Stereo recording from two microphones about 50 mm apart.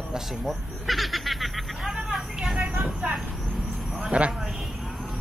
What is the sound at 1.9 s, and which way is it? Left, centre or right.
Vehicle, centre.